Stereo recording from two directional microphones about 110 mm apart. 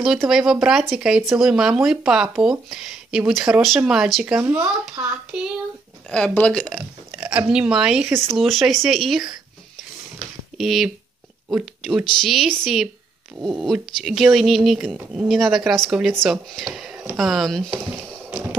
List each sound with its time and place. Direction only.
0.0 s speech: 5° right (ahead or behind)
6.0 s speech: 5° left (ahead or behind)
7.1 s speech: 10° right (ahead or behind)
8.1 s speech: 25° right (ahead or behind)
8.4 s speech: centre (ahead or behind)
10.1 s a sound: centre (ahead or behind)
11.5 s speech: centre (ahead or behind)